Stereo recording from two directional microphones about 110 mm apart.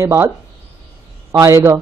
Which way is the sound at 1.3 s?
25° right (ahead or behind).